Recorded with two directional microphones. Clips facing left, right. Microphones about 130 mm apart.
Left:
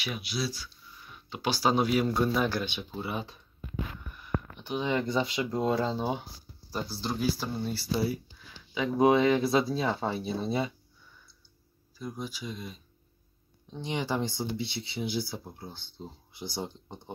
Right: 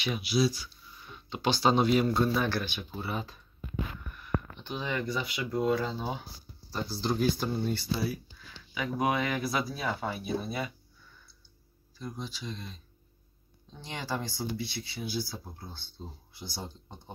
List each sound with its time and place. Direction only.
0.0 s speech: 5° left (ahead or behind)
0.3 s speech: 15° right (ahead or behind)
1.1 s speech: 5° left (ahead or behind)
4.6 s speech: 10° left (ahead or behind)
4.8 s speech: 25° left (ahead or behind)
6.7 s speech: 5° left (ahead or behind)
8.7 s speech: 25° left (ahead or behind)
12.0 s speech: 10° left (ahead or behind)